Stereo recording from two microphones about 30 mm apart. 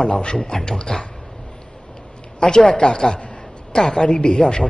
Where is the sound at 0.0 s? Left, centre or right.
Left.